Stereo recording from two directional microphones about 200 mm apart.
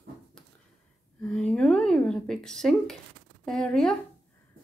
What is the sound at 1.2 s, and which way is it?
Speech, 5° left (ahead or behind).